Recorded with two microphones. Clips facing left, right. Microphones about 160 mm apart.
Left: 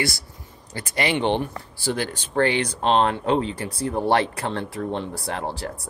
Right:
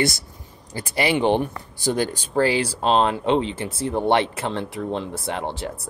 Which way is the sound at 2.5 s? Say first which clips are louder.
Right 1 dB; 30° right (ahead or behind).